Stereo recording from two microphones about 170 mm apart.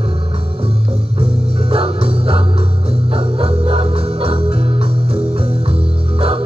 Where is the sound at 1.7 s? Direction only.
35° right (ahead or behind).